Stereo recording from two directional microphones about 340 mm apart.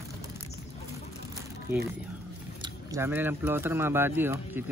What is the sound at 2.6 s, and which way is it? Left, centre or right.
Speech, centre.